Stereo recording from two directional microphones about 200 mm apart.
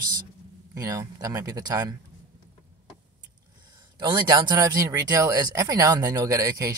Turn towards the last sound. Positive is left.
turn(degrees=-15)  # may be behind; listen again after turning